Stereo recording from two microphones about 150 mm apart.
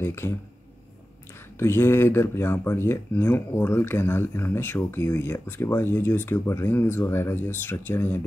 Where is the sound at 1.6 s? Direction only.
15° left (ahead or behind).